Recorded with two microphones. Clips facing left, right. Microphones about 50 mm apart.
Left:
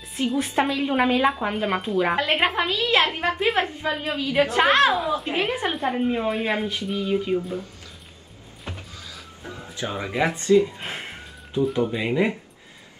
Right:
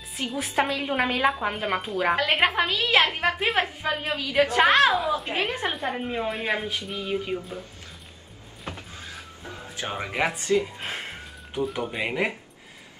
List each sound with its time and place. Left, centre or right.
0.2 s a woman's voice: centre
3.1 s speech: centre
3.3 s a woman's voice: centre
8.6 s music: right
9.8 s speech: right
10.0 s speech: right
10.6 s a sound: centre
11.6 s a woman's voice: centre
12.0 s speech: centre